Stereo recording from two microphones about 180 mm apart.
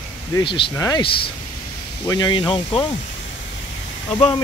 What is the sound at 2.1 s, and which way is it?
Speech, 25° left (ahead or behind).